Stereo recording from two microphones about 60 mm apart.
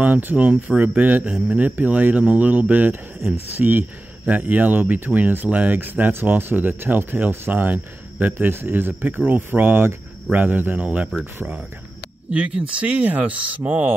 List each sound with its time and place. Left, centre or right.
0.0 s speech: right
12.3 s speech: right